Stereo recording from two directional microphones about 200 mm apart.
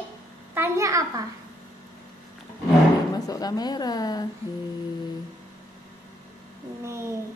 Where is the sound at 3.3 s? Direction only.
20° left (ahead or behind).